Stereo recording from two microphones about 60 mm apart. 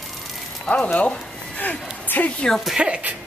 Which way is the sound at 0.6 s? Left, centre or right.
Left.